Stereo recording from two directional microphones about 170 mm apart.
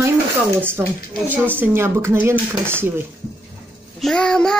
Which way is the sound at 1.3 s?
10° right (ahead or behind).